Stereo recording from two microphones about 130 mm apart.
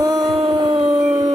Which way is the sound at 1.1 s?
55° right (ahead or behind).